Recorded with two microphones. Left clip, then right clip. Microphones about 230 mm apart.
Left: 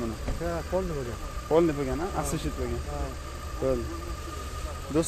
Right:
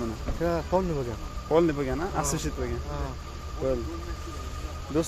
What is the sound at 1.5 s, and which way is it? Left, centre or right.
Speech, centre.